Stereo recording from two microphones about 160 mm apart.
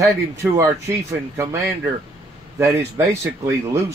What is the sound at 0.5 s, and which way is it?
A man's voice, 20° right (ahead or behind).